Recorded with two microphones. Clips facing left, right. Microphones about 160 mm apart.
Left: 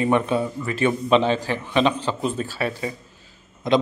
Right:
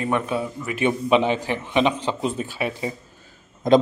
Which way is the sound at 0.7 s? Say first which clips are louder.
Even; 15° right (ahead or behind).